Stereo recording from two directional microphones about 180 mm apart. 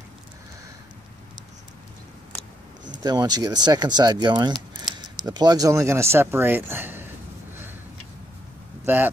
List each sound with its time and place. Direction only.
3.0 s speech: 20° right (ahead or behind)
8.8 s speech: 10° right (ahead or behind)